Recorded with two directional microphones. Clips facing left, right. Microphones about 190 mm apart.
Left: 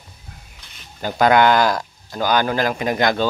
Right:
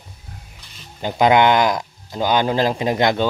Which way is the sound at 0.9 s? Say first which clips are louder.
Even; 20° right (ahead or behind).